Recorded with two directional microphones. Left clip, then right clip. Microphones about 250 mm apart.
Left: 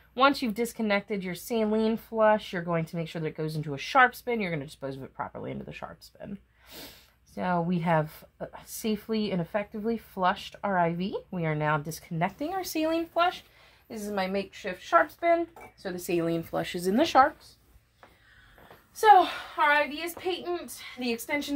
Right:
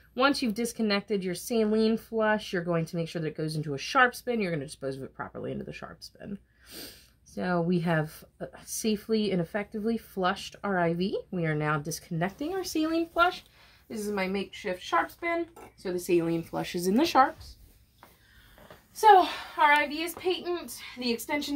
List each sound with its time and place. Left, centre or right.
0.1 s speech: centre
18.9 s speech: centre